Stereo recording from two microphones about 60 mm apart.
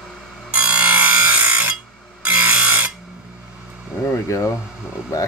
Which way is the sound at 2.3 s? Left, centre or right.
Right.